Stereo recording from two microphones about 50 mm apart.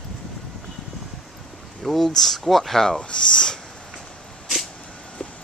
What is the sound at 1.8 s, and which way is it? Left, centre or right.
Speech, centre.